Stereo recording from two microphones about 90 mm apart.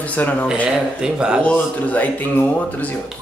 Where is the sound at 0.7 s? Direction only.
10° right (ahead or behind).